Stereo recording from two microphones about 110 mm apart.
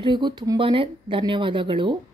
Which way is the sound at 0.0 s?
45° right (ahead or behind).